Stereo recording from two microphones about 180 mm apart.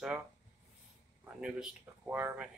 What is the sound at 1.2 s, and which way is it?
Speech, 5° right (ahead or behind).